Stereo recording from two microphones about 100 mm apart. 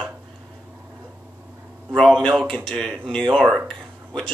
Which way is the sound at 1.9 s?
5° left (ahead or behind).